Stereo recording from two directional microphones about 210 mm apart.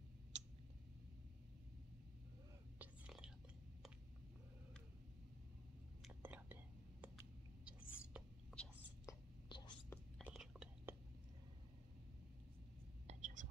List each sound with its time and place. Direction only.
0.3 s tick-tock: 35° right (ahead or behind)
2.8 s whispering: 5° right (ahead or behind)
6.0 s whispering: 10° right (ahead or behind)
9.0 s whispering: 20° left (ahead or behind)
9.8 s whispering: centre (ahead or behind)
13.0 s whispering: 35° right (ahead or behind)